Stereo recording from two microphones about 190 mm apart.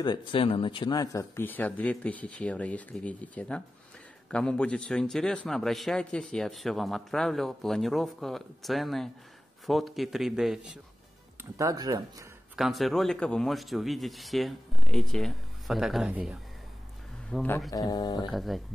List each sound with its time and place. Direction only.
0.0 s a man's voice: 25° left (ahead or behind); by 10.8 s centre (ahead or behind)
11.5 s speech: 20° right (ahead or behind)
12.5 s a man's voice: centre (ahead or behind)
17.6 s speech: 20° left (ahead or behind)
18.3 s a man's voice: centre (ahead or behind)